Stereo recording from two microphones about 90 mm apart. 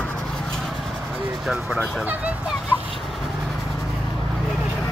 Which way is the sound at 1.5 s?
5° right (ahead or behind).